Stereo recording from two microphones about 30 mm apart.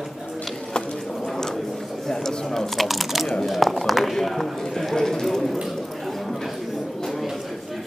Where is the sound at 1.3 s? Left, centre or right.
Centre.